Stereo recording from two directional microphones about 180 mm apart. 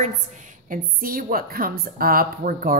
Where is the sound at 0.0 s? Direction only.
45° right (ahead or behind).